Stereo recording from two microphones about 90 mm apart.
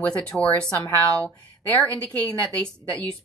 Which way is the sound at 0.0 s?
15° left (ahead or behind).